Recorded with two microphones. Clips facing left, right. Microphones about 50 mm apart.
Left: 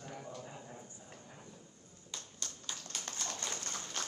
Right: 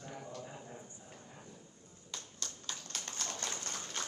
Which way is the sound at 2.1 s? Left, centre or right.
Centre.